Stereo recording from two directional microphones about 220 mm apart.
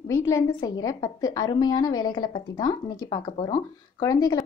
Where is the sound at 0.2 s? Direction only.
15° left (ahead or behind).